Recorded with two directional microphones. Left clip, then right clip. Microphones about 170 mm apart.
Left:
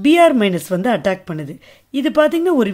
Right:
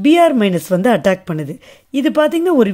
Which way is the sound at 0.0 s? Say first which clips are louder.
Even; 15° right (ahead or behind).